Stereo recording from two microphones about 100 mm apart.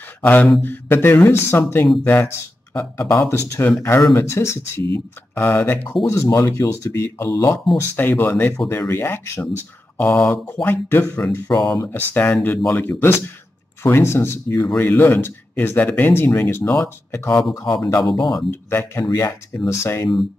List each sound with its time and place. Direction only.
0.2 s a sound: 20° left (ahead or behind)
0.6 s speech: 20° left (ahead or behind)
6.0 s speech: 30° left (ahead or behind)
17.6 s speech: 40° left (ahead or behind)
18.5 s speech: 25° left (ahead or behind)